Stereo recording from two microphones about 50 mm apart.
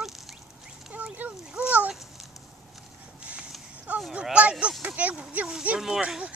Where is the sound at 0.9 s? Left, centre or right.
Right.